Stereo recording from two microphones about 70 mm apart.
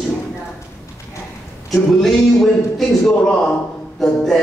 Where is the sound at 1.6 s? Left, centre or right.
Centre.